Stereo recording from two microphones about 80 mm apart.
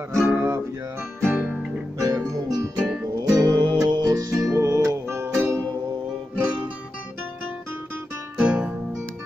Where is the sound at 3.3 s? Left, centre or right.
Right.